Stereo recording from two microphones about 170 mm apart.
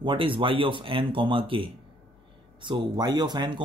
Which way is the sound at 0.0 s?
30° right (ahead or behind).